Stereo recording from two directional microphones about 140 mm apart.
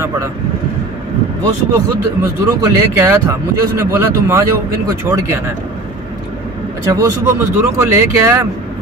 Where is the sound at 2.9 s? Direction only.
15° right (ahead or behind).